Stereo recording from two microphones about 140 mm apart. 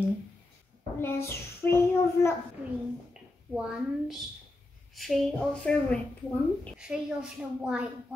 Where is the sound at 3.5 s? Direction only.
5° right (ahead or behind).